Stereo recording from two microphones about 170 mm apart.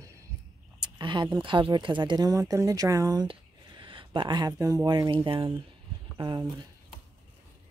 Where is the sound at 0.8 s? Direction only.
25° right (ahead or behind).